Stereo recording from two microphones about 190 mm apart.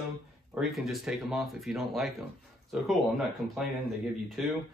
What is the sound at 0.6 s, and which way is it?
Speech, centre (ahead or behind).